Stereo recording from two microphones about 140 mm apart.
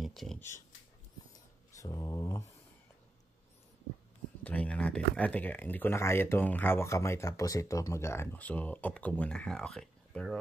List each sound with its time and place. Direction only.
0.0 s a sound: centre (ahead or behind)
1.8 s mantra: 25° left (ahead or behind)
4.4 s speech: 10° left (ahead or behind)